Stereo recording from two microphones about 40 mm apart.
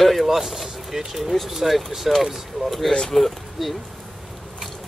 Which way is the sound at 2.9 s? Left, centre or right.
Centre.